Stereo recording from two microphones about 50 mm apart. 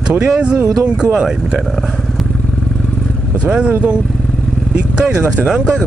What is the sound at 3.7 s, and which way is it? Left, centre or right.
Speech, right.